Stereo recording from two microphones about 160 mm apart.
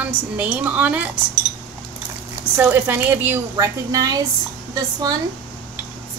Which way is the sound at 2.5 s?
10° right (ahead or behind).